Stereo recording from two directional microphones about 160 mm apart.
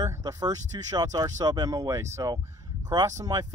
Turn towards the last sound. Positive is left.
turn(degrees=-20)  # may be behind; listen again after turning